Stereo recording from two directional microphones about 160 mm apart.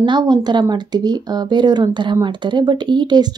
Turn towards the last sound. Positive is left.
turn(degrees=-25)  # may be behind; listen again after turning